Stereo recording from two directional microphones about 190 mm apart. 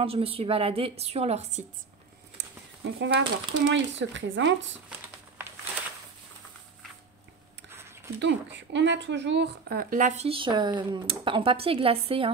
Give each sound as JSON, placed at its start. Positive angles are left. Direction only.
{"t": 0.0, "sound": "a woman's voice", "side_deg": -30}
{"t": 3.0, "sound": "speech", "side_deg": -70}
{"t": 8.2, "sound": "a woman's voice", "side_deg": -70}